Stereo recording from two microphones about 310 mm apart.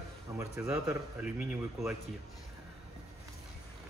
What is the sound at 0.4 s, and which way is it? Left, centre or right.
Speech, centre.